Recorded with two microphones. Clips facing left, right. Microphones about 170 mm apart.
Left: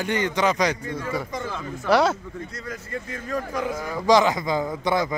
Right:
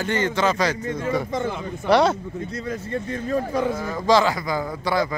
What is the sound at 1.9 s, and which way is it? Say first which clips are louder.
Speech: right 2 dB; 5° left (ahead or behind).